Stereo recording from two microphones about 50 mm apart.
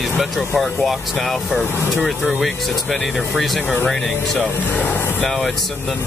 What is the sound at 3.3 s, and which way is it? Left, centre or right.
Speech, centre.